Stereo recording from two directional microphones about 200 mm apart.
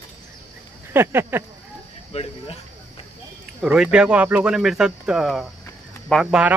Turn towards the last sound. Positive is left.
turn(degrees=-5)  # may be behind; listen again after turning